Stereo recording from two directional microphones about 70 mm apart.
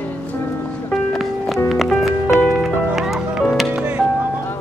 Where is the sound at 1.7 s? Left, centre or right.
Centre.